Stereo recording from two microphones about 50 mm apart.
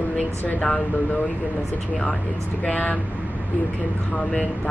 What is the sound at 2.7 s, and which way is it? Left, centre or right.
Speech, left.